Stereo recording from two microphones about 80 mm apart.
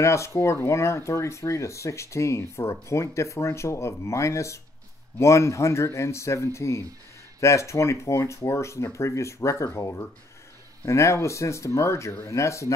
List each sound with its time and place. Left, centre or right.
0.0 s speech: left
10.9 s speech: left